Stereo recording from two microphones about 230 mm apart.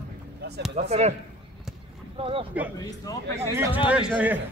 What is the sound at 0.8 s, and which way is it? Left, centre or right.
Speech, right.